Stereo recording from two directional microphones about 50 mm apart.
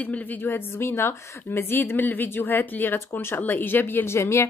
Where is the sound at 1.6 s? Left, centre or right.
Left.